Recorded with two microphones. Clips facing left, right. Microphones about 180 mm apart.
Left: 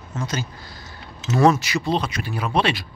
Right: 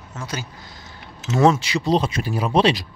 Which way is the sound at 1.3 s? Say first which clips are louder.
Even; 20° right (ahead or behind).